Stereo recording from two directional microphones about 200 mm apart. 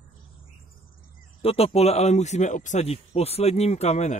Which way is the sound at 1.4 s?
30° left (ahead or behind).